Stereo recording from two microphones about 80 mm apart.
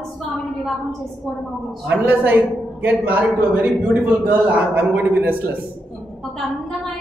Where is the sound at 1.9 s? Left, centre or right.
Right.